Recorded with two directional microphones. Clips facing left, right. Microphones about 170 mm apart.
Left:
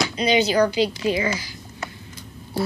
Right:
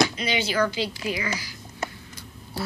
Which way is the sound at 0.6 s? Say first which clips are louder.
Left 6 dB; 15° left (ahead or behind).